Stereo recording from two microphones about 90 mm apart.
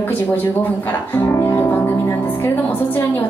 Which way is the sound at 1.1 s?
25° left (ahead or behind).